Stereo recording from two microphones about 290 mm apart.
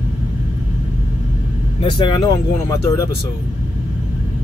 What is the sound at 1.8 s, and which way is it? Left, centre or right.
Speech, centre.